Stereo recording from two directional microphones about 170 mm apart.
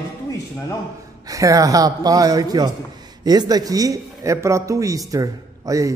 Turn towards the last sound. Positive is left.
turn(degrees=-20)  # may be behind; listen again after turning